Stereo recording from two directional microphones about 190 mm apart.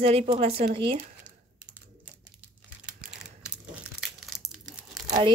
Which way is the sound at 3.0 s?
5° right (ahead or behind).